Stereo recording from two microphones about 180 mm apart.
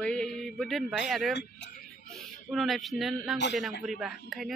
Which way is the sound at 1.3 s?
65° left (ahead or behind).